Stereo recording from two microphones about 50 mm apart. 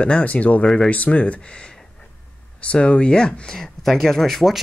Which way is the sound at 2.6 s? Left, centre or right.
Left.